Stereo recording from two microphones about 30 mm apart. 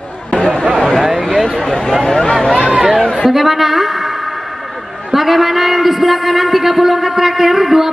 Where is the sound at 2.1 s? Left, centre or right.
Left.